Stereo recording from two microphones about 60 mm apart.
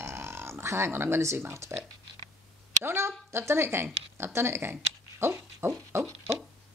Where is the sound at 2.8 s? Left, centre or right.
Right.